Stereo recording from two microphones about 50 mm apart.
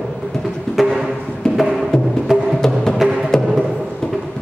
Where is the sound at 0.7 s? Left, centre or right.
Centre.